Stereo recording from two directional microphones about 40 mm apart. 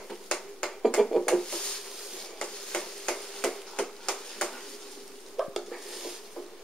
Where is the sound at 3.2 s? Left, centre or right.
Centre.